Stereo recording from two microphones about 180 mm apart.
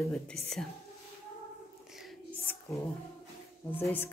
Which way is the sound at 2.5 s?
15° left (ahead or behind).